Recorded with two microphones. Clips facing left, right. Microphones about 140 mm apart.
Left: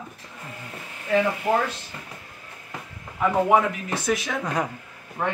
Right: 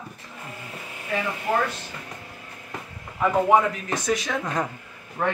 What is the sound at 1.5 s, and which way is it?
Speech, 15° left (ahead or behind).